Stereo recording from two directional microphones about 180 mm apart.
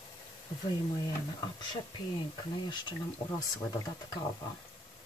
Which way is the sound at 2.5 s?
25° left (ahead or behind).